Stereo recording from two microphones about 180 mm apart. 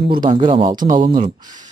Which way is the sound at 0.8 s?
50° right (ahead or behind).